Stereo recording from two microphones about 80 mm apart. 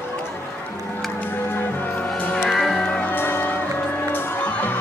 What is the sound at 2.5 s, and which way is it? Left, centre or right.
Music, centre.